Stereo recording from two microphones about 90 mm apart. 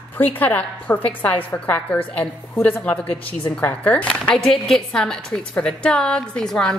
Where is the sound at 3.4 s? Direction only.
20° left (ahead or behind).